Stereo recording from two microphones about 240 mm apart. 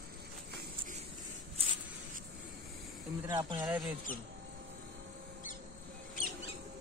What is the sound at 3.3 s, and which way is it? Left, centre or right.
Speech, centre.